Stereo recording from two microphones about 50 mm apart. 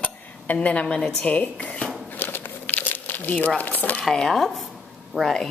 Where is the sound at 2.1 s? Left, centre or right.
Left.